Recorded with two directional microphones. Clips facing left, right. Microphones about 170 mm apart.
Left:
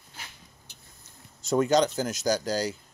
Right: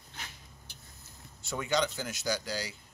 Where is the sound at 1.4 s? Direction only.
40° left (ahead or behind).